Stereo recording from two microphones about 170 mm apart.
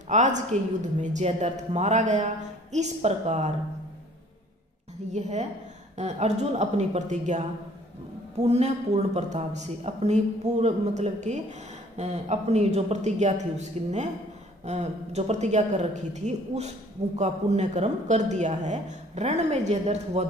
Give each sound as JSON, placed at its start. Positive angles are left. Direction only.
{"t": 0.1, "sound": "a woman's voice", "side_deg": -45}
{"t": 5.1, "sound": "a woman's voice", "side_deg": -40}